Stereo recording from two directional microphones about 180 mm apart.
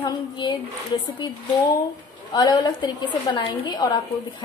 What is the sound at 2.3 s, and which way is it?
Speech, 20° left (ahead or behind).